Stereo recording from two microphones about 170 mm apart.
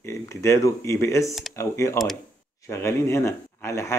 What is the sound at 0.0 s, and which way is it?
Speech, 15° left (ahead or behind).